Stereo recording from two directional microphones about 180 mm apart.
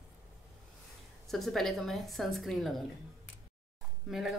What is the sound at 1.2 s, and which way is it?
Speech, centre (ahead or behind).